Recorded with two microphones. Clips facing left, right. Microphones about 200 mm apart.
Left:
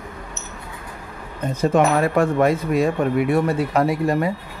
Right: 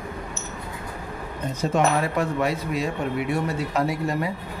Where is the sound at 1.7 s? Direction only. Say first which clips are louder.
Left 4 dB; 50° left (ahead or behind).